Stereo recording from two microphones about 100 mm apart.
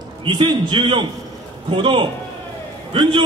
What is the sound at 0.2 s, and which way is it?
A man's voice, 50° right (ahead or behind).